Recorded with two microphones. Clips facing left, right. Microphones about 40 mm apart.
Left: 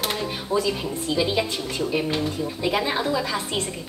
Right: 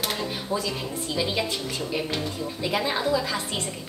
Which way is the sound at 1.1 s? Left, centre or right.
Centre.